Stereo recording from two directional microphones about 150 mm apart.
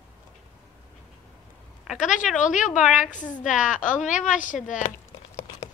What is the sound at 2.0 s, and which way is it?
A woman's voice, 60° left (ahead or behind).